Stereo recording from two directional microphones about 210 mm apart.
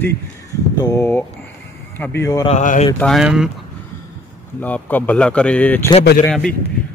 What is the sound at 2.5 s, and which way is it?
Speech, 35° left (ahead or behind).